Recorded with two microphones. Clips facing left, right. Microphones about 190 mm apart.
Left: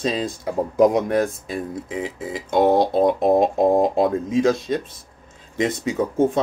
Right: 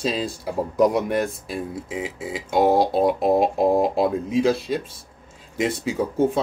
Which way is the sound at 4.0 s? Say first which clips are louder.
Left 2 dB; 5° right (ahead or behind).